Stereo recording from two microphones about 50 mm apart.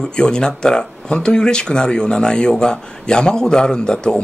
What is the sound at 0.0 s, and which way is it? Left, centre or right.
Speech, centre.